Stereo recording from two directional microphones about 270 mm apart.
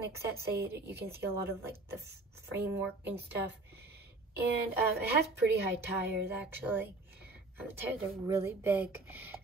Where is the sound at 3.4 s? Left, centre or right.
Right.